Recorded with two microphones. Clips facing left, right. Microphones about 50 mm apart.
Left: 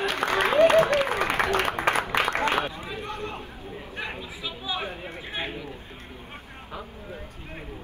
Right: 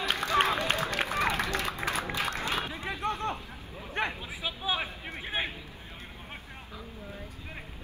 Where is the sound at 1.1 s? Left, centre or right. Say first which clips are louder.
Left 5 dB; left.